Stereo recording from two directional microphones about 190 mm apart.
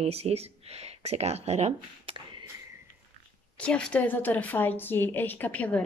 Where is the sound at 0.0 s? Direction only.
35° right (ahead or behind).